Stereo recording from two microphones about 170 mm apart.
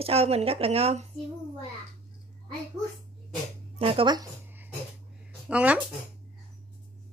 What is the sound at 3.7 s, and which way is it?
Speech, 35° right (ahead or behind).